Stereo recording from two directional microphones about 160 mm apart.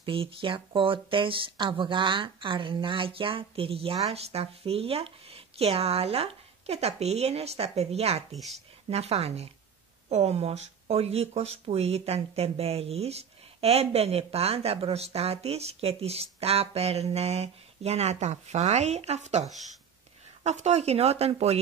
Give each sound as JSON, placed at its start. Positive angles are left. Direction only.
{"t": 0.0, "sound": "speech", "side_deg": -35}
{"t": 8.4, "sound": "speech", "side_deg": 0}
{"t": 8.9, "sound": "speech", "side_deg": -40}
{"t": 20.4, "sound": "speech", "side_deg": -45}